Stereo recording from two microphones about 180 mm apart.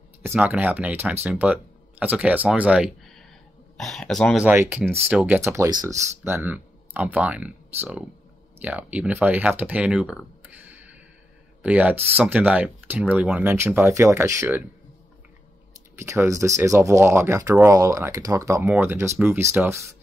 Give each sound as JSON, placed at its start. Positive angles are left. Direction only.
{"t": 0.2, "sound": "speech", "side_deg": -10}
{"t": 4.5, "sound": "speech", "side_deg": -10}
{"t": 10.7, "sound": "a sound", "side_deg": -10}
{"t": 11.6, "sound": "speech", "side_deg": -10}
{"t": 16.0, "sound": "speech", "side_deg": -15}